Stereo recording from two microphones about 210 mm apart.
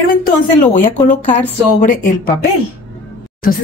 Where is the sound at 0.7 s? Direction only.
35° left (ahead or behind).